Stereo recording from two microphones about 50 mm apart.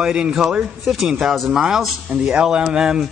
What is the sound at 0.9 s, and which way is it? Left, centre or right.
Speech, centre.